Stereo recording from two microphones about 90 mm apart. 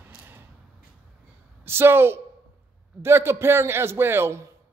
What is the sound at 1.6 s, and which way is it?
A woman's voice, 25° right (ahead or behind).